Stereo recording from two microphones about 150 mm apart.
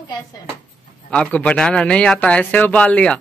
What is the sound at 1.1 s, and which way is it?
Speech, 10° left (ahead or behind).